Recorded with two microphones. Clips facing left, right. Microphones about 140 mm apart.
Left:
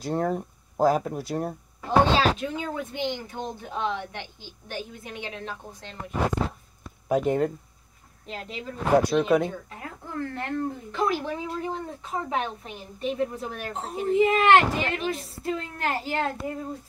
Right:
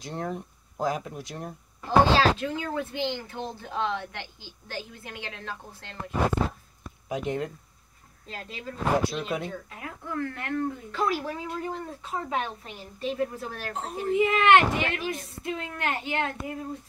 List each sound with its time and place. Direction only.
0.0 s speech: 45° left (ahead or behind)
1.9 s speech: 20° left (ahead or behind)
7.1 s speech: 45° left (ahead or behind)
8.3 s speech: 20° left (ahead or behind)
9.1 s speech: 55° left (ahead or behind)
9.8 s speech: 30° left (ahead or behind)
10.9 s speech: 20° left (ahead or behind)
14.1 s a woman's voice: 30° left (ahead or behind)